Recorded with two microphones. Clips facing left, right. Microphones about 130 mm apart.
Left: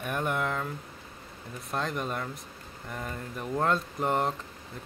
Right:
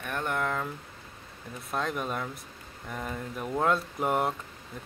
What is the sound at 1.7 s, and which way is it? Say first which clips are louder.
Speech: right 1 dB; centre (ahead or behind).